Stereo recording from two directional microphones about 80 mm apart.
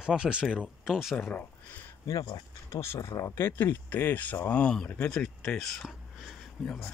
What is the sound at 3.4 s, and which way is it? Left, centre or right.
Speech, left.